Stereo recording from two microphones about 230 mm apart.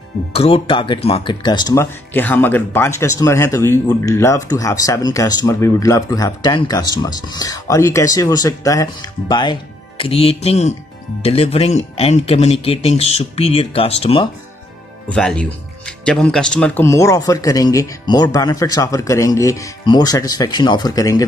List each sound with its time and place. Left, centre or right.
0.3 s speech: left
15.1 s speech: centre